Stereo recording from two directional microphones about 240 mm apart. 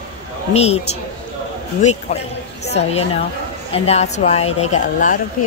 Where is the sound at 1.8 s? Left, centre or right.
Left.